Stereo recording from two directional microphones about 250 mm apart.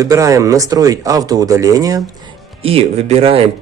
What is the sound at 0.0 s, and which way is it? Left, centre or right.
Speech, centre.